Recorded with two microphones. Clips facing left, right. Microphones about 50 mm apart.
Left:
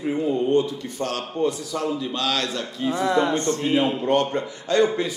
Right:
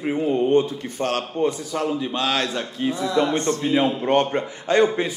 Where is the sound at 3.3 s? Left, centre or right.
Right.